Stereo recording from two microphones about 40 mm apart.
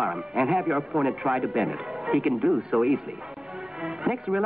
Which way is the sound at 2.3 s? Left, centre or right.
Centre.